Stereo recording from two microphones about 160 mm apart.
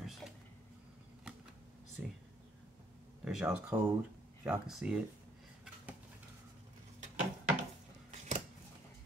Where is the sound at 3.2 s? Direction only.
10° right (ahead or behind).